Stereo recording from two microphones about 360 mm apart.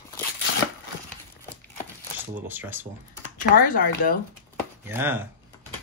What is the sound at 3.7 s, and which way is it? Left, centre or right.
Speech, left.